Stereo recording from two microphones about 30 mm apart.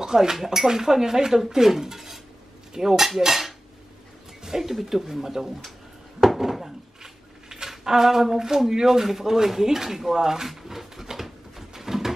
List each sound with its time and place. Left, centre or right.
0.0 s speech: centre
3.2 s cutlery: centre
4.4 s speech: centre
6.2 s a sound: centre
7.7 s speech: centre
10.5 s a sound: centre